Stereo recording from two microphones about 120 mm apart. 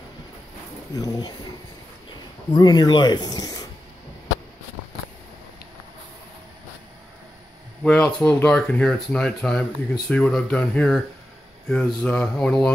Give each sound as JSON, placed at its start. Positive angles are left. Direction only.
{"t": 0.9, "sound": "speech", "side_deg": 30}
{"t": 2.5, "sound": "speech", "side_deg": 35}
{"t": 7.8, "sound": "speech", "side_deg": 15}